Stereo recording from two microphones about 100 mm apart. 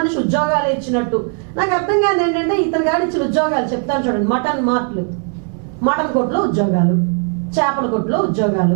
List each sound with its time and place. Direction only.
0.0 s a woman's voice: 15° right (ahead or behind)
5.9 s a woman's voice: 15° right (ahead or behind)